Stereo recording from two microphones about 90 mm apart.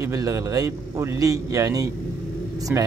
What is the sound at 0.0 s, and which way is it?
Speech, 35° right (ahead or behind).